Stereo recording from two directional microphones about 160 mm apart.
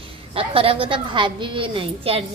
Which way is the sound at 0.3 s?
35° right (ahead or behind).